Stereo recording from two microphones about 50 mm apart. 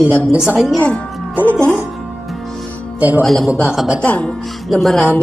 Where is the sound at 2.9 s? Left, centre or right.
Right.